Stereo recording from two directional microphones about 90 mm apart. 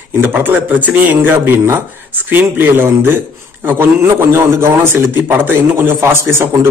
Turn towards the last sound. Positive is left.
turn(degrees=-30)  # may be behind; listen again after turning